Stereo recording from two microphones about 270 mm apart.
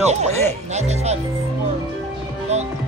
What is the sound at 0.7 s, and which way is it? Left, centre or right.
Speech, right.